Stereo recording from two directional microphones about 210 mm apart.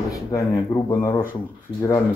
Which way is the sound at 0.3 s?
15° left (ahead or behind).